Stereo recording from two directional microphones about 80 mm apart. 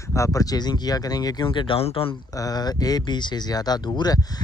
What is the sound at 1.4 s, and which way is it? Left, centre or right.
Speech, left.